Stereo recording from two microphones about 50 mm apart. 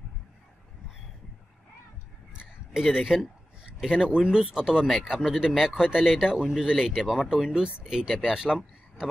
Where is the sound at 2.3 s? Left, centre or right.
Centre.